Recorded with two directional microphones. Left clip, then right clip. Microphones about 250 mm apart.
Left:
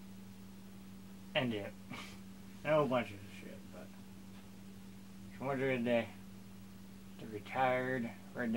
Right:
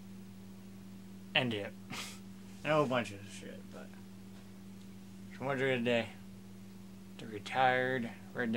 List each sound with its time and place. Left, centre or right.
1.3 s speech: centre
5.4 s speech: centre
7.4 s speech: centre